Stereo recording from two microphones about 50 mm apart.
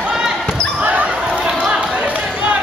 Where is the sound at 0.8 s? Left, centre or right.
Right.